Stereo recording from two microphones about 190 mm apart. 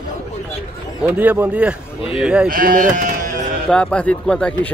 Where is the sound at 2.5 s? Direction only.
45° right (ahead or behind).